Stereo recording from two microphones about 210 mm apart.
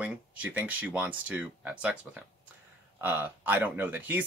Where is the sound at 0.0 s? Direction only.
5° right (ahead or behind).